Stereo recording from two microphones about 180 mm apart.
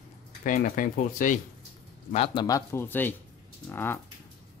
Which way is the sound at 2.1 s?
35° left (ahead or behind).